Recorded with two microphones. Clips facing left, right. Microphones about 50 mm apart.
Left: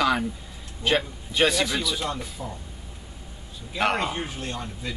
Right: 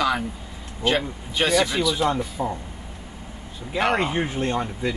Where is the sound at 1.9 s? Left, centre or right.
Right.